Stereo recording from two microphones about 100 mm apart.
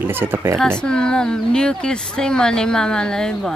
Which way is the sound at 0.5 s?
10° left (ahead or behind).